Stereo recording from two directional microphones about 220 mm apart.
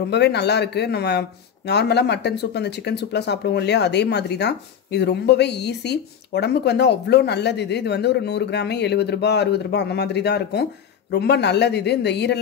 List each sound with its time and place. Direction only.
0.1 s speech: 50° left (ahead or behind)